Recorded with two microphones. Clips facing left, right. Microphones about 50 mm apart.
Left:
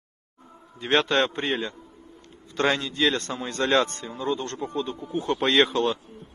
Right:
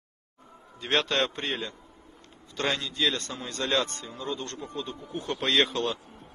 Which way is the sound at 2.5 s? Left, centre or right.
Left.